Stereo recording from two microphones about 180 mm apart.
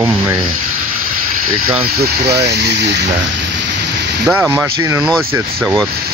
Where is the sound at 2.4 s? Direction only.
65° right (ahead or behind).